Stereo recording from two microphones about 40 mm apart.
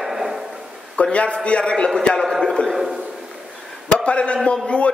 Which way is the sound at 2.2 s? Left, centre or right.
Centre.